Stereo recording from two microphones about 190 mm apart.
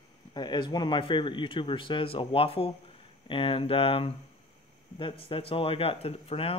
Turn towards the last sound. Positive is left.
turn(degrees=30)  # may be behind; listen again after turning